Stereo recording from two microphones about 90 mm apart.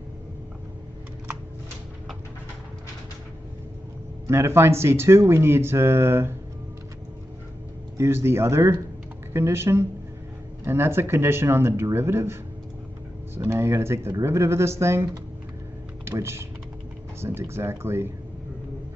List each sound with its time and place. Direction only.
4.3 s speech: 30° right (ahead or behind)
8.0 s speech: 30° right (ahead or behind)
13.5 s speech: 30° right (ahead or behind)
16.1 s speech: 30° right (ahead or behind)